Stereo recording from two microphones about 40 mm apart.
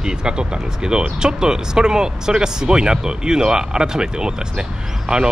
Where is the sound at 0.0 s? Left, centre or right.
Centre.